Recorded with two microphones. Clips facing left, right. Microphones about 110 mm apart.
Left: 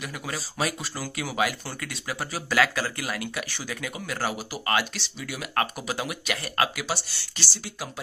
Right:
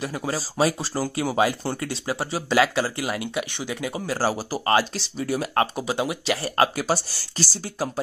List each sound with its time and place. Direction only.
0.0 s speech: 30° right (ahead or behind)